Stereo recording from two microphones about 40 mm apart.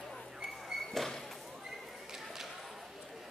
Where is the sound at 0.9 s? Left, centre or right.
Centre.